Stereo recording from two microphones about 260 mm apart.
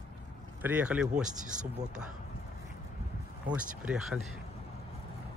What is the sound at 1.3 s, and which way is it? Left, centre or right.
Speech, right.